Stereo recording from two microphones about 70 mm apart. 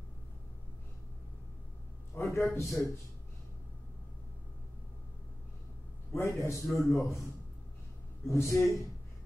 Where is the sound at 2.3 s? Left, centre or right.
Left.